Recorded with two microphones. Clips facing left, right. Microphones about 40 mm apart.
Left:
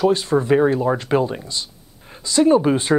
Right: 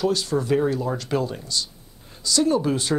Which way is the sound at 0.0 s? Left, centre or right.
Left.